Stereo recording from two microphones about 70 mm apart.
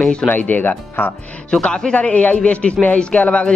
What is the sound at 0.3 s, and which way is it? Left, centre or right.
Speech, left.